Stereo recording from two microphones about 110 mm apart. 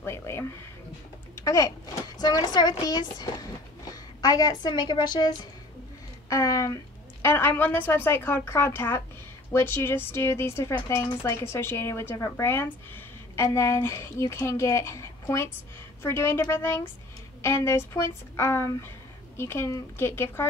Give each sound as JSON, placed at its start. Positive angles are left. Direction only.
{"t": 0.0, "sound": "a woman's voice", "side_deg": 25}
{"t": 6.2, "sound": "a woman's voice", "side_deg": 30}